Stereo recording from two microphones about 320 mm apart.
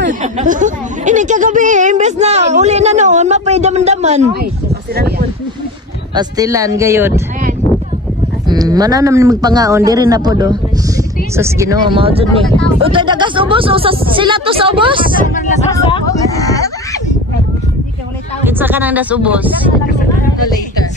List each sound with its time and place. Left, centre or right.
0.0 s speech: right
6.1 s speech: centre
8.5 s speech: centre
15.7 s speech: centre
18.4 s speech: centre